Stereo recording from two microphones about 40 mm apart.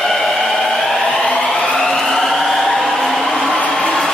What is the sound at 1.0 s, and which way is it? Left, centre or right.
Siren, left.